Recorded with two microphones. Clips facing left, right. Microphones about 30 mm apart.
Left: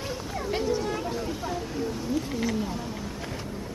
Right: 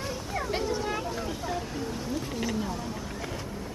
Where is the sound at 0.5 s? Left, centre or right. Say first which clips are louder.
Left 4 dB; centre.